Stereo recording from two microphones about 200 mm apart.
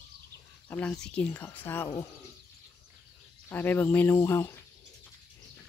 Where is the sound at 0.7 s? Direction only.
5° left (ahead or behind).